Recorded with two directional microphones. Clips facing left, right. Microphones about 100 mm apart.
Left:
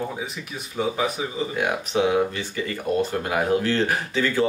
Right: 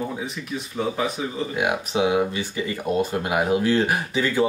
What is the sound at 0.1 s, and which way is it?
A man's voice, 5° left (ahead or behind).